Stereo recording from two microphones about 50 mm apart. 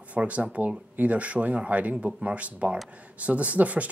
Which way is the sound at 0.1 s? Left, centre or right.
Right.